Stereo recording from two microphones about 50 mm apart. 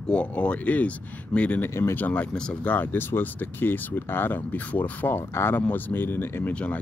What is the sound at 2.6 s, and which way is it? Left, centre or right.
Speech, left.